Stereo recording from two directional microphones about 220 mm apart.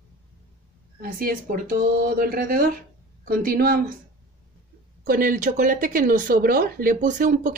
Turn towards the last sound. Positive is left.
turn(degrees=-35)  # may be behind; listen again after turning